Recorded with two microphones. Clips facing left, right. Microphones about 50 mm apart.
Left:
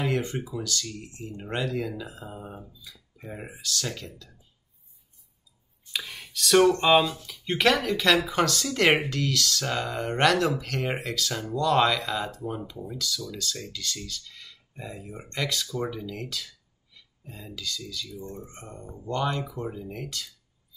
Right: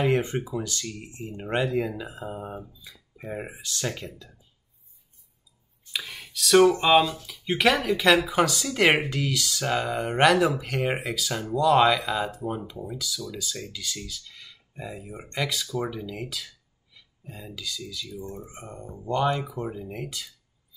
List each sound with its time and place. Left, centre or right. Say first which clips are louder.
0.0 s speech: right 4 dB; right
5.9 s speech: even; centre